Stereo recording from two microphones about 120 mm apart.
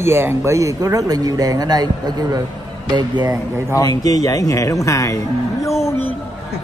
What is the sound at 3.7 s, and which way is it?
Speech, 30° left (ahead or behind).